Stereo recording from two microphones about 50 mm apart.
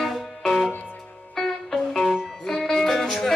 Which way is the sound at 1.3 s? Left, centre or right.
Centre.